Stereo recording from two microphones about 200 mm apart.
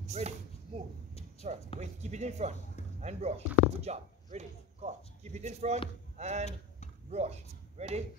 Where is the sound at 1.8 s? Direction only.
35° right (ahead or behind).